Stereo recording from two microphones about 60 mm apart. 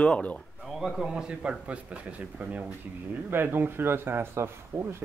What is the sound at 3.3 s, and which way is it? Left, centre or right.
Speech, right.